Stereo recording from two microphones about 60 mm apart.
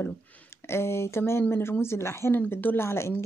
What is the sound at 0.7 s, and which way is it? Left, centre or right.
Speech, left.